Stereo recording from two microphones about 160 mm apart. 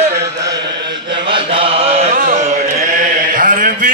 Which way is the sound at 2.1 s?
60° right (ahead or behind).